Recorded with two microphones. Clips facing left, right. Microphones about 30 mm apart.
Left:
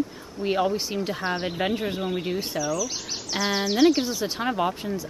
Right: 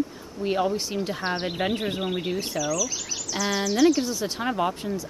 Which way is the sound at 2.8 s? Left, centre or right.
Left.